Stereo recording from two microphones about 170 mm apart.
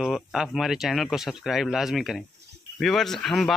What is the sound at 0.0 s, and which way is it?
Speech, centre (ahead or behind).